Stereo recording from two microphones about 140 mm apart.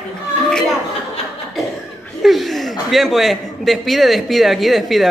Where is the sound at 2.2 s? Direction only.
Centre (ahead or behind).